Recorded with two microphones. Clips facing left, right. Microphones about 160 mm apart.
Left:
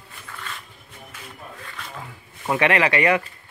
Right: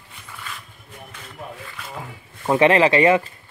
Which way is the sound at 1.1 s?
5° left (ahead or behind).